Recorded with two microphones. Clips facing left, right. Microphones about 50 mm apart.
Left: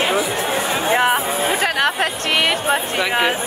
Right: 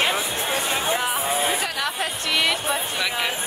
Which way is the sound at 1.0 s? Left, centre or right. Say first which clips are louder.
Left 6 dB; left.